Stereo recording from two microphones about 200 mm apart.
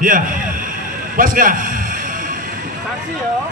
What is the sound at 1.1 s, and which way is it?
Speech, 45° right (ahead or behind).